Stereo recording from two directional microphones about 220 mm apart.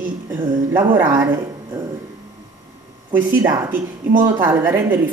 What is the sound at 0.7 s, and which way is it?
Speech, 10° right (ahead or behind).